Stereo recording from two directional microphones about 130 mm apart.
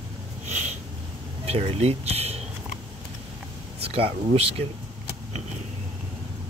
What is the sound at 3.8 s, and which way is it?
Speech, 50° right (ahead or behind).